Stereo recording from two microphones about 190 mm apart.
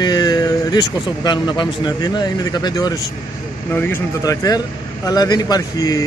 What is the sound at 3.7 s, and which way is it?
Speech, 10° left (ahead or behind).